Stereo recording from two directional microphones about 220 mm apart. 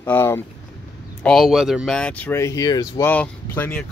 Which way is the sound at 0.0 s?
10° left (ahead or behind).